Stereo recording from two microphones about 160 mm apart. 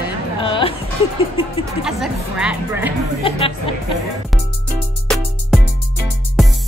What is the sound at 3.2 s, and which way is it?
Speech, 35° left (ahead or behind).